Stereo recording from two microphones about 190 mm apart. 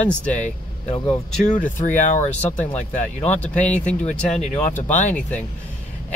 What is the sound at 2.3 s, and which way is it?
Speech, 5° left (ahead or behind).